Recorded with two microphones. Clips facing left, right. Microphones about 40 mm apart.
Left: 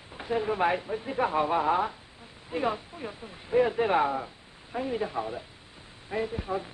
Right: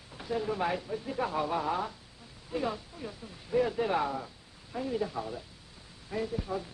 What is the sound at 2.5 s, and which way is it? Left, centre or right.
Speech, left.